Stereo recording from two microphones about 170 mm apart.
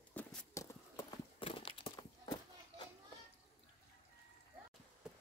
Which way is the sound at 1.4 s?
30° left (ahead or behind).